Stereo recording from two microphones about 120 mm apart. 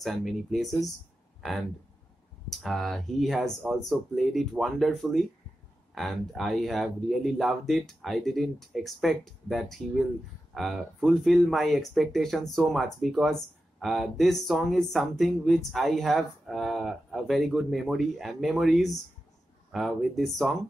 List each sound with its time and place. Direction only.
0.0 s speech: centre (ahead or behind)
2.5 s speech: centre (ahead or behind)